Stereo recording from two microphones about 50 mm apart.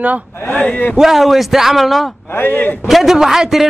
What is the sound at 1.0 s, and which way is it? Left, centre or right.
A man's voice, centre.